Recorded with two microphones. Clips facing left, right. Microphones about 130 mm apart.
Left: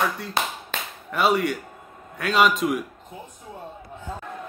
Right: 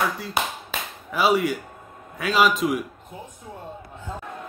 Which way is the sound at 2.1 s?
Centre (ahead or behind).